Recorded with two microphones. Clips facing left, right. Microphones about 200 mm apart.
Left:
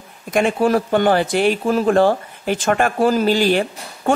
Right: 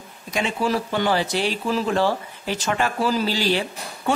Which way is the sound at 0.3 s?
50° left (ahead or behind).